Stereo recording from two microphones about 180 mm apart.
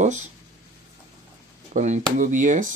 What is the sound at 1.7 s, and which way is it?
Speech, 40° right (ahead or behind).